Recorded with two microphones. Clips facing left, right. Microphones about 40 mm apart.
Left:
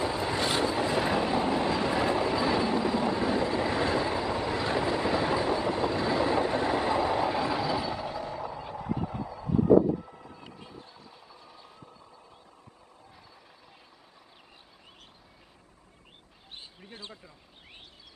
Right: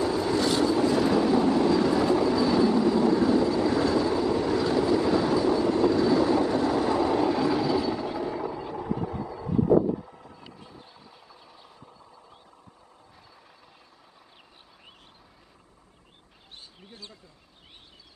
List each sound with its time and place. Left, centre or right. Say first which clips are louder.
0.0 s train: right 4 dB; left
8.1 s a sound: right 5 dB; centre
8.7 s vehicle: right 3 dB; centre
10.8 s vehicle: left 1 dB; centre
11.1 s vehicle: even; centre
16.9 s a sound: left 2 dB; left